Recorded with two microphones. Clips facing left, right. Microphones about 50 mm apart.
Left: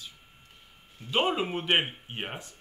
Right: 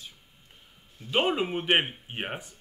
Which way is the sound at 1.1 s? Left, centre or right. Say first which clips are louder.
Right 1 dB; centre.